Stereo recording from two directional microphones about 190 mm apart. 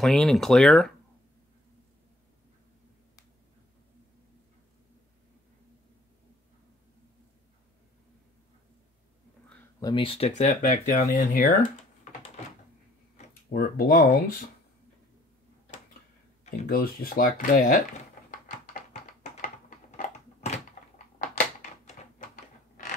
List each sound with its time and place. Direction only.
0.0 s speech: centre (ahead or behind)
9.8 s speech: 25° left (ahead or behind); by 11.5 s 50° left (ahead or behind)
13.5 s speech: 50° left (ahead or behind)
16.6 s speech: 55° left (ahead or behind)
20.0 s typing: 40° left (ahead or behind)
21.2 s a sound: 45° left (ahead or behind)